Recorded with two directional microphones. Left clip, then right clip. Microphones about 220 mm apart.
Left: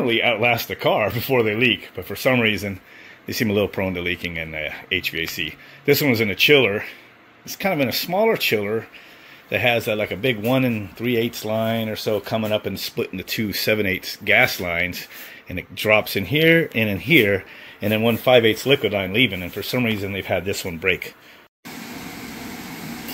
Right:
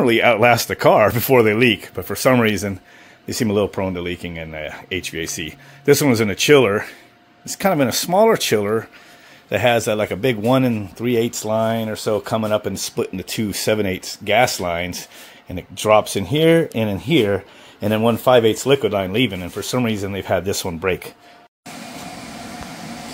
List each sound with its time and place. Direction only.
0.0 s speech: 35° right (ahead or behind)
3.3 s speech: 20° right (ahead or behind)